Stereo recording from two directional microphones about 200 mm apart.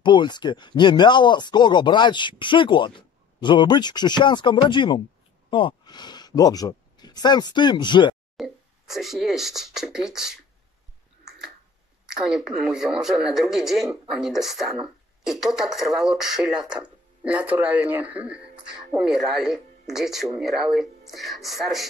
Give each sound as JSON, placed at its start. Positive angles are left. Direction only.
{"t": 0.0, "sound": "speech", "side_deg": 20}
{"t": 8.4, "sound": "speech", "side_deg": 0}
{"t": 12.1, "sound": "speech", "side_deg": -5}